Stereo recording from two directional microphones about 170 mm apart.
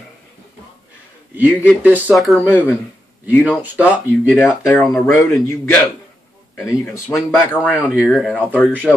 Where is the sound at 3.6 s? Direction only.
10° right (ahead or behind).